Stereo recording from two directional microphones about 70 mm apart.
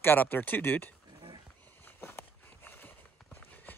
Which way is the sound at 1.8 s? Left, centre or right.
Left.